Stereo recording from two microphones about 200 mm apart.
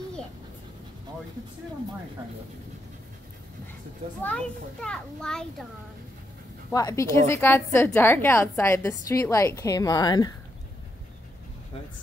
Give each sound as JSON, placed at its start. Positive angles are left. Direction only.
{"t": 4.2, "sound": "a child's voice", "side_deg": 5}
{"t": 6.7, "sound": "a woman's voice", "side_deg": 20}